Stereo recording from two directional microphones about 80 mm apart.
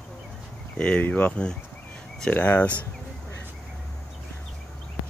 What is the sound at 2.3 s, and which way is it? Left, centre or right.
Speech, left.